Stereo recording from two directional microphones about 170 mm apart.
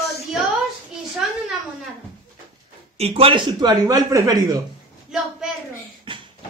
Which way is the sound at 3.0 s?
35° right (ahead or behind).